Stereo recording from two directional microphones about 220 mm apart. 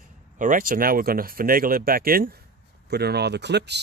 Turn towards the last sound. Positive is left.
turn(degrees=-50)  # may be behind; listen again after turning